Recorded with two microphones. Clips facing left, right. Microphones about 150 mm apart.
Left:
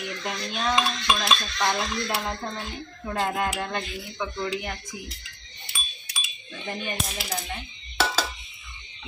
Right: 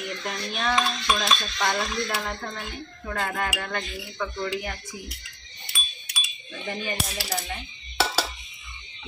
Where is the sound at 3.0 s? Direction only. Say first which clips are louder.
Left 3 dB; 5° left (ahead or behind).